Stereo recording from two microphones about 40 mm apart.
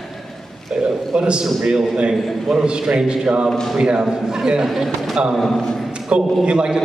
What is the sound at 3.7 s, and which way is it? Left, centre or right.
Speech, centre.